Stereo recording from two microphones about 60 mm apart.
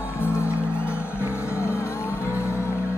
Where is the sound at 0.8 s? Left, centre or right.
Left.